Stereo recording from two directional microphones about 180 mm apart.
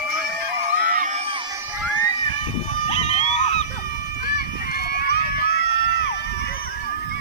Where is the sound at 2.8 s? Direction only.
35° left (ahead or behind).